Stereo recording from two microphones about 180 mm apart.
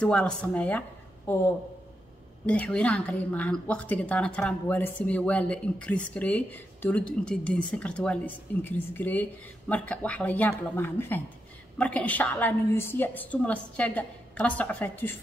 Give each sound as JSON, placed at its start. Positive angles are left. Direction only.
{"t": 0.0, "sound": "speech", "side_deg": 5}
{"t": 2.4, "sound": "a woman's voice", "side_deg": 5}